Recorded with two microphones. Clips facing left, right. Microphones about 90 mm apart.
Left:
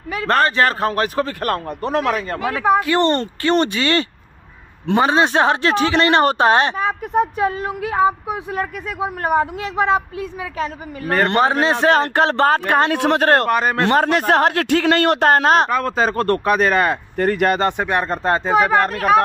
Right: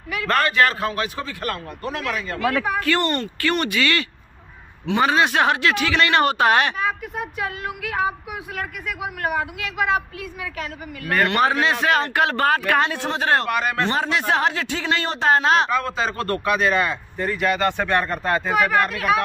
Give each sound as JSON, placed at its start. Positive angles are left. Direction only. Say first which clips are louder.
{"t": 0.1, "sound": "a man's voice", "louder": "left 4 dB", "side_deg": 30}
{"t": 1.8, "sound": "a man's voice", "louder": "left 8 dB", "side_deg": 35}
{"t": 12.9, "sound": "a man's voice", "louder": "left 6 dB", "side_deg": 65}
{"t": 13.8, "sound": "a man's voice", "louder": "left 6 dB", "side_deg": 50}
{"t": 17.6, "sound": "speech", "louder": "left 2 dB", "side_deg": 20}